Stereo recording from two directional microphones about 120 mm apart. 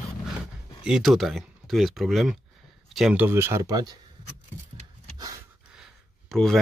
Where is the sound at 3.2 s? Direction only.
20° right (ahead or behind).